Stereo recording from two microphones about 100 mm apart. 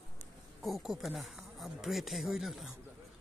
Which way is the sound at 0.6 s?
5° right (ahead or behind).